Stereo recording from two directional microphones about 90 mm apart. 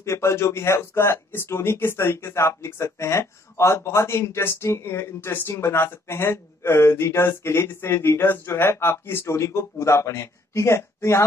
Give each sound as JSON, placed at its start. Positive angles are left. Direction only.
{"t": 0.0, "sound": "speech", "side_deg": 30}